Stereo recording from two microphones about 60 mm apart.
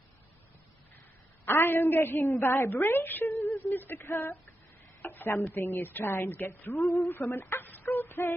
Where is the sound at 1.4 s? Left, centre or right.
Left.